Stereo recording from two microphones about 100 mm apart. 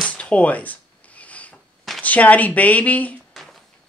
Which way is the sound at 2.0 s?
15° left (ahead or behind).